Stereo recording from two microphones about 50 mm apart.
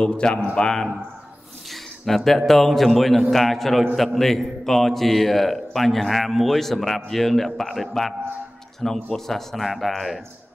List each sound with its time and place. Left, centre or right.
0.0 s a man's voice: centre